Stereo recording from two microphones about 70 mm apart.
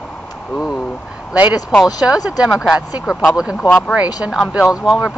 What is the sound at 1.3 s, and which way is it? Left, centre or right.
Speech, centre.